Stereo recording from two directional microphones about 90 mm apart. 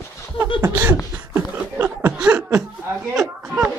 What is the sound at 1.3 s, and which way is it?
Chuckle, 20° right (ahead or behind).